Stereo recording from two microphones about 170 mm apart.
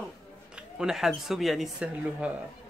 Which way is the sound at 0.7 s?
5° right (ahead or behind).